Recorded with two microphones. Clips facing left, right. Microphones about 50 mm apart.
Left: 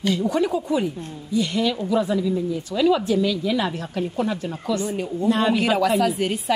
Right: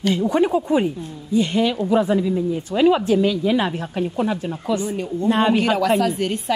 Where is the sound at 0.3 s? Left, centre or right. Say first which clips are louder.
Right 4 dB; right.